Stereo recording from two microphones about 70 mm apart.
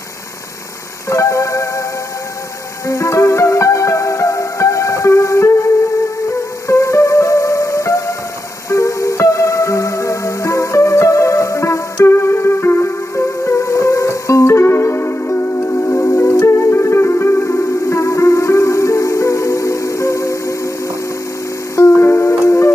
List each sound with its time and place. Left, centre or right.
1.1 s music: left
2.9 s music: left
6.7 s music: left
21.7 s music: left